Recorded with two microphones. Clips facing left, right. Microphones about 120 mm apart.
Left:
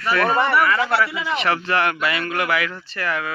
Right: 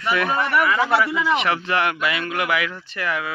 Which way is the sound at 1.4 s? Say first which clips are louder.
Left 1 dB; 10° right (ahead or behind).